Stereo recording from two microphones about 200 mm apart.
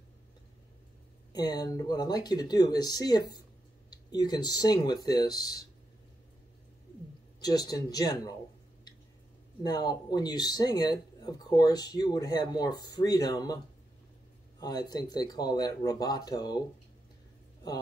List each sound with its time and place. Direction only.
1.3 s speech: 20° left (ahead or behind)
7.3 s speech: 20° left (ahead or behind)
9.6 s speech: 20° left (ahead or behind)
14.6 s speech: 20° left (ahead or behind)